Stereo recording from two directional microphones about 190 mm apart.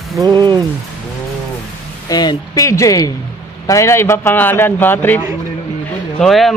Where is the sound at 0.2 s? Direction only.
20° right (ahead or behind).